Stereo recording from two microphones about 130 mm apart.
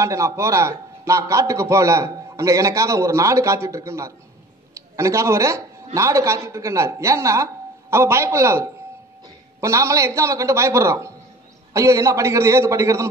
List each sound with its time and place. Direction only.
0.0 s a man's voice: 25° right (ahead or behind)